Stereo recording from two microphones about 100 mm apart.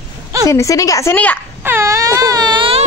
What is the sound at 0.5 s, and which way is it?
Speech, 30° left (ahead or behind).